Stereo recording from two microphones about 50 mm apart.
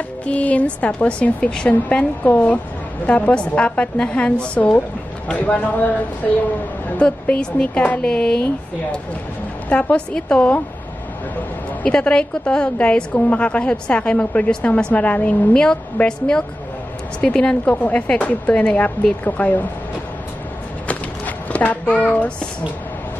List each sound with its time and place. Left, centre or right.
0.3 s a woman's voice: left
7.0 s a woman's voice: left
9.7 s a woman's voice: left
11.8 s a woman's voice: centre
15.5 s a woman's voice: centre
21.5 s a child's voice: left